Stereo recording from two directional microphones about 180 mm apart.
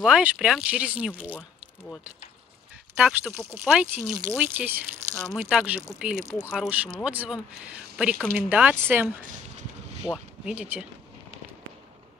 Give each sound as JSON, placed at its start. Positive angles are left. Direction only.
{"t": 0.0, "sound": "speech", "side_deg": -5}
{"t": 3.0, "sound": "speech", "side_deg": -5}
{"t": 3.7, "sound": "speech", "side_deg": 0}
{"t": 9.2, "sound": "a sound", "side_deg": -40}
{"t": 10.0, "sound": "speech", "side_deg": -5}